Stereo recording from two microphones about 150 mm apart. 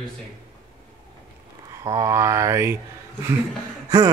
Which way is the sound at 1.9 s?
20° right (ahead or behind).